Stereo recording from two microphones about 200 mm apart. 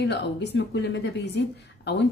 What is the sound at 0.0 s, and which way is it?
Speech, 60° left (ahead or behind).